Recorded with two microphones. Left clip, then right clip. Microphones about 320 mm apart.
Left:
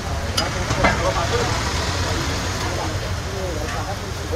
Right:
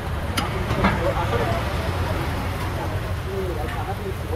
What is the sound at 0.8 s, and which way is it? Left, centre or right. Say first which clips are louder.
Vehicle: left 4 dB; left.